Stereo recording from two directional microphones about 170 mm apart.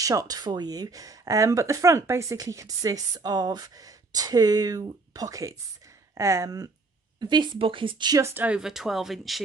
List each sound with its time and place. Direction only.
0.0 s speech: 20° right (ahead or behind); by 9.4 s centre (ahead or behind)